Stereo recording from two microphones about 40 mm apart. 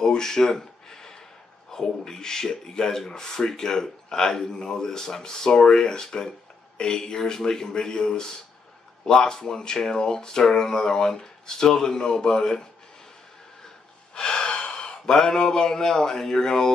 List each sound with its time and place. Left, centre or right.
0.0 s a sound: centre
1.7 s speech: centre
14.1 s gasp: left
15.1 s speech: centre